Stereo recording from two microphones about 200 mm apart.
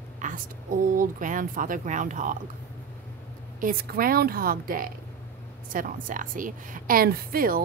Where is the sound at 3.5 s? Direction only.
45° right (ahead or behind).